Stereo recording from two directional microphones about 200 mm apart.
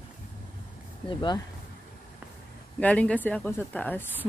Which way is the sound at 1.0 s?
20° left (ahead or behind).